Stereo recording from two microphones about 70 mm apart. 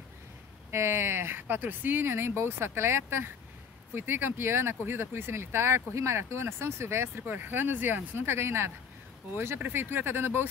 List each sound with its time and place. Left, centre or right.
0.7 s speech: right
7.2 s speech: right